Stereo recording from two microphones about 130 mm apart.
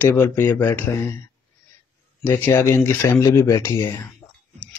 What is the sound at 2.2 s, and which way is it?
Speech, 20° left (ahead or behind).